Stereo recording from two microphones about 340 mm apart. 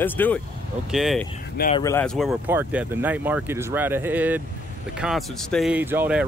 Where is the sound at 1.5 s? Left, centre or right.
Left.